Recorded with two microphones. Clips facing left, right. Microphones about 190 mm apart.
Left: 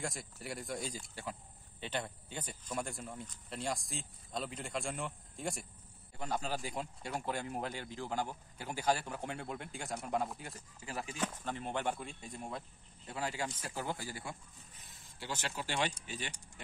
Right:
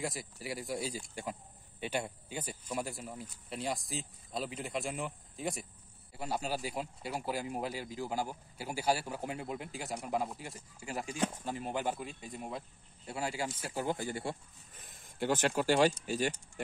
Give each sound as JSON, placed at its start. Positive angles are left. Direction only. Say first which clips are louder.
{"t": 0.0, "sound": "speech", "louder": "right 3 dB", "side_deg": 0}
{"t": 10.5, "sound": "speech", "louder": "right 3 dB", "side_deg": -15}
{"t": 13.8, "sound": "speech", "louder": "right 9 dB", "side_deg": -20}
{"t": 14.8, "sound": "speech", "louder": "right 13 dB", "side_deg": -55}